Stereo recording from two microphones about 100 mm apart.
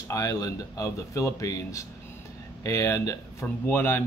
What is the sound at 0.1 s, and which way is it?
Speech, 35° left (ahead or behind).